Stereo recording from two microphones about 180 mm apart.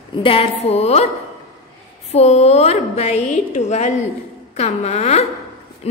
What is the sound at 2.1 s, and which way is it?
A woman's voice, 35° left (ahead or behind).